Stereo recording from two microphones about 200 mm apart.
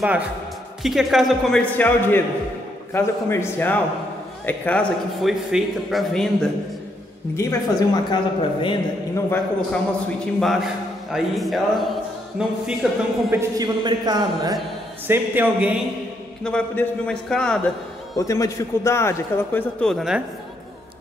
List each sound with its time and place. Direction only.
0.8 s a man's voice: centre (ahead or behind)
7.3 s a woman's voice: 15° left (ahead or behind)
9.3 s a man's voice: 5° left (ahead or behind)
13.3 s a man's voice: 15° right (ahead or behind)
15.0 s a man's voice: 10° right (ahead or behind)
16.4 s a man's voice: 5° left (ahead or behind)
18.1 s a man's voice: 15° left (ahead or behind); by 20.2 s centre (ahead or behind)